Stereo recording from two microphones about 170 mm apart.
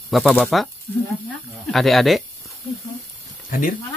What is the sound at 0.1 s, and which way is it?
Speech, centre (ahead or behind).